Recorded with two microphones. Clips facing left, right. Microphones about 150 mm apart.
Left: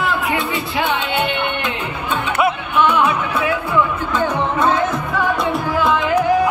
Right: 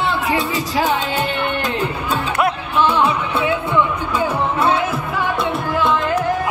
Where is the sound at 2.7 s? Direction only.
30° right (ahead or behind).